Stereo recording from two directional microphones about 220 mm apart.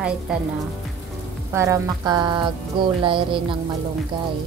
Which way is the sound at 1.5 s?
15° right (ahead or behind).